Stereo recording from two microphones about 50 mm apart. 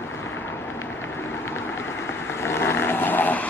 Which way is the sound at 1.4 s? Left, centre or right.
Left.